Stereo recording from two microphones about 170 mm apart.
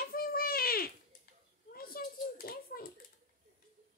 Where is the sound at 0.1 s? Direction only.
60° left (ahead or behind).